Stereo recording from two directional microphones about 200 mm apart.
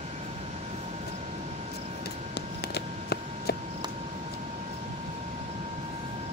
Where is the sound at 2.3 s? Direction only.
55° left (ahead or behind).